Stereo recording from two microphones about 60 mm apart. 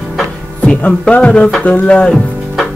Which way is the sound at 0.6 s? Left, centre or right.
Centre.